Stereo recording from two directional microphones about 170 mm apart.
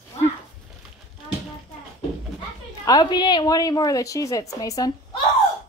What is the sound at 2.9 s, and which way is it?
A woman's voice, 25° left (ahead or behind).